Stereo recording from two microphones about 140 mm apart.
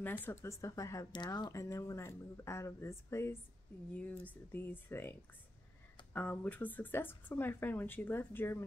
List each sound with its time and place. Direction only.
0.0 s speech: 15° left (ahead or behind)
6.1 s speech: 10° left (ahead or behind)